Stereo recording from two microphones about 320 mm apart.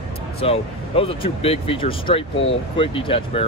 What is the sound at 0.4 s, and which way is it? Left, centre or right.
Speech, centre.